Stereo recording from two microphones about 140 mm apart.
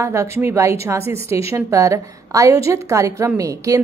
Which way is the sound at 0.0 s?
20° right (ahead or behind).